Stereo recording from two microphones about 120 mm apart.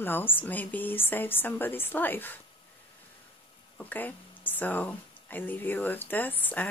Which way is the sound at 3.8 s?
15° left (ahead or behind).